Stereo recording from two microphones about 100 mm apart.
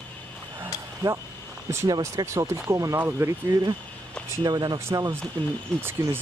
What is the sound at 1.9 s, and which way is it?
Speech, 40° right (ahead or behind).